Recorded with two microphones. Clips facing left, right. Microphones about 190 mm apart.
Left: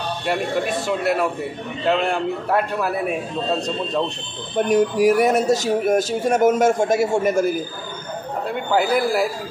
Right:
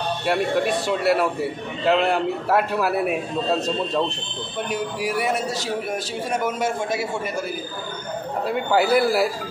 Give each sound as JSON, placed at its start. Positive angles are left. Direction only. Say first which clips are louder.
{"t": 0.3, "sound": "a man's voice", "louder": "right 1 dB", "side_deg": 0}
{"t": 4.6, "sound": "a man's voice", "louder": "left 10 dB", "side_deg": 45}
{"t": 8.5, "sound": "a man's voice", "louder": "right 1 dB", "side_deg": -5}